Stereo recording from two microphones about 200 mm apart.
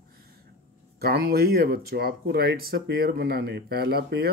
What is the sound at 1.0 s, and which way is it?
Speech, 50° right (ahead or behind).